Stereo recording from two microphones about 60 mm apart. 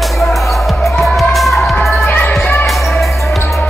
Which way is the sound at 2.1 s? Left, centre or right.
Left.